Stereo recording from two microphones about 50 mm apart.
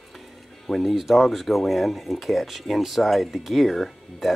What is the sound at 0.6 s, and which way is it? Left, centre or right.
Speech, centre.